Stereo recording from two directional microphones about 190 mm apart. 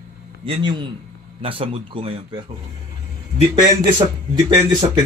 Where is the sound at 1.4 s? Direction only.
30° right (ahead or behind).